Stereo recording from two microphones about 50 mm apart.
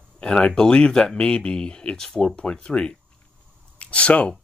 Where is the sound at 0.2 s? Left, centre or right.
Left.